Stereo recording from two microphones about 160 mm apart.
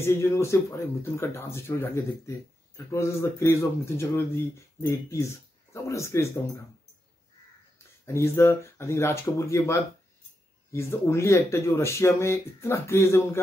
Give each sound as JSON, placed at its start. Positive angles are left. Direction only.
{"t": 0.0, "sound": "speech", "side_deg": 15}
{"t": 8.0, "sound": "speech", "side_deg": 15}